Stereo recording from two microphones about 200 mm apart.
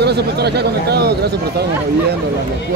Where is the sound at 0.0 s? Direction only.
55° right (ahead or behind).